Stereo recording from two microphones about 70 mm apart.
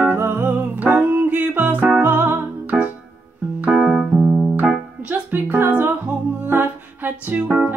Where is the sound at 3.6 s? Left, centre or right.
Centre.